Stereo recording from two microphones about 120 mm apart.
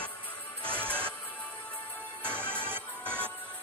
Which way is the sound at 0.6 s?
10° left (ahead or behind).